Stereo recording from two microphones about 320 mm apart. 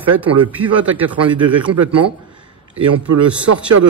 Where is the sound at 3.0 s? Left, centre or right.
Right.